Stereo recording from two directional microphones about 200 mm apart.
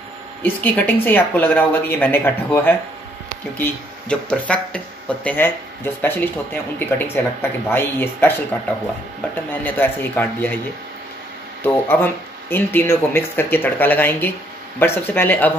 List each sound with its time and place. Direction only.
0.4 s speech: 10° left (ahead or behind)
9.5 s speech: 10° left (ahead or behind)
11.6 s speech: 10° left (ahead or behind)